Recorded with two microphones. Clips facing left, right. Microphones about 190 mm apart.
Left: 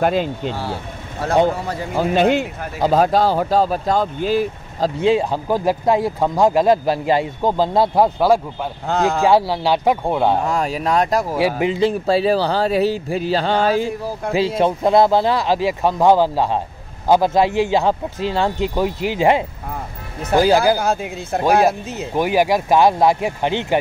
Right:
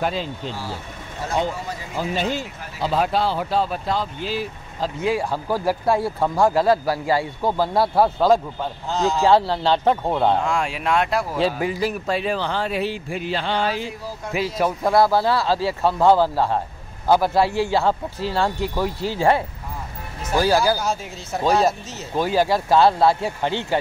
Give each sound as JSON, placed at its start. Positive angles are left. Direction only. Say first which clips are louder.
{"t": 0.0, "sound": "speech", "louder": "left 7 dB", "side_deg": 55}
{"t": 2.8, "sound": "speech", "louder": "left 6 dB", "side_deg": 45}
{"t": 5.0, "sound": "speech", "louder": "left 5 dB", "side_deg": 20}
{"t": 8.8, "sound": "speech", "louder": "left 4 dB", "side_deg": 60}
{"t": 9.2, "sound": "speech", "louder": "even", "side_deg": 10}
{"t": 10.4, "sound": "speech", "louder": "left 3 dB", "side_deg": 40}
{"t": 11.3, "sound": "speech", "louder": "left 3 dB", "side_deg": 15}
{"t": 14.6, "sound": "speech", "louder": "left 3 dB", "side_deg": 25}
{"t": 20.7, "sound": "speech", "louder": "left 5 dB", "side_deg": 60}
{"t": 22.1, "sound": "speech", "louder": "left 3 dB", "side_deg": 15}